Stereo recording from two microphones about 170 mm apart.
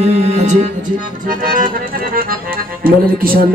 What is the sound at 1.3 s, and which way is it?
Accordion, 55° right (ahead or behind).